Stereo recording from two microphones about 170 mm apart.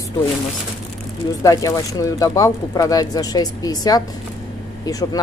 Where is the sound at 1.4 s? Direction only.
20° left (ahead or behind).